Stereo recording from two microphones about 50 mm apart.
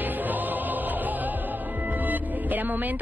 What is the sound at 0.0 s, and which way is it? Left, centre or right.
Music, right.